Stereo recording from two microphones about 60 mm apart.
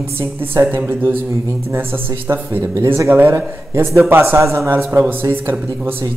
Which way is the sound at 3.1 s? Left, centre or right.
Right.